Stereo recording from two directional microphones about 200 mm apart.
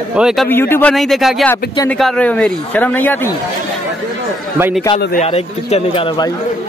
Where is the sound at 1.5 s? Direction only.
15° left (ahead or behind).